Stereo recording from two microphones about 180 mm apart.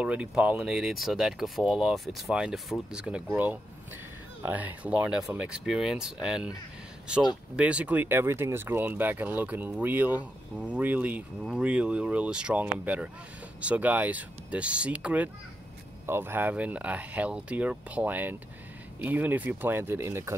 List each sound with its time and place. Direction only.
0.0 s speech: 5° right (ahead or behind)
7.5 s speech: 5° right (ahead or behind)